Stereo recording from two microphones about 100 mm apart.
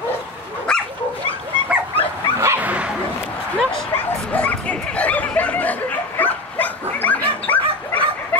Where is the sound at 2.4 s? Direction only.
25° right (ahead or behind).